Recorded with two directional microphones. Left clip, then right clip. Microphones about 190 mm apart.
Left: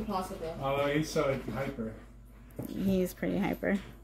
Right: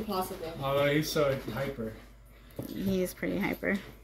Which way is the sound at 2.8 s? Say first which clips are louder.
Even; 10° left (ahead or behind).